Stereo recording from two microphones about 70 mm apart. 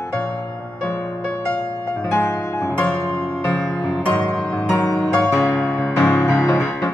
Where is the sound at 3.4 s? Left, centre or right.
Left.